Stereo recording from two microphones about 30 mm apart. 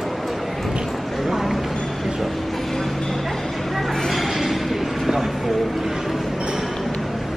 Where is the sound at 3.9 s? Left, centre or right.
Centre.